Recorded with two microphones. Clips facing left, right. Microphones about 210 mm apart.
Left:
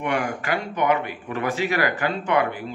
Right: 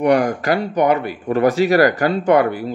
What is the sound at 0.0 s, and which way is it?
Speech, 40° right (ahead or behind).